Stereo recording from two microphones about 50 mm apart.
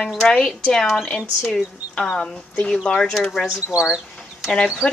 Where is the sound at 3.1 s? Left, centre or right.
Centre.